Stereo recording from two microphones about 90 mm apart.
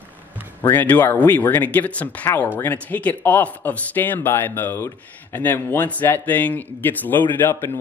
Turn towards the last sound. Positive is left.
turn(degrees=20)  # may be behind; listen again after turning